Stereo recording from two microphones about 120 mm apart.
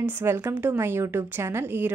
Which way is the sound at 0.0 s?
20° right (ahead or behind).